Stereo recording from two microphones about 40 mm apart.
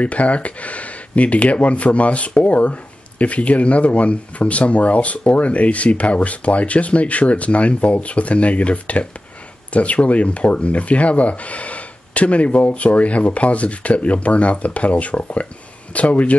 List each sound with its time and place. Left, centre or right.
0.0 s speech: left